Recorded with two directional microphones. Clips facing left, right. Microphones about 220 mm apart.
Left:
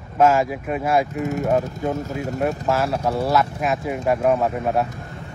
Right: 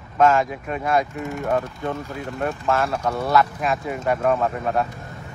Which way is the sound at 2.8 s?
30° left (ahead or behind).